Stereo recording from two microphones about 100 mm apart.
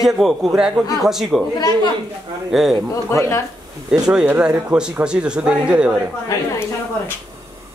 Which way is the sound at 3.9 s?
10° right (ahead or behind).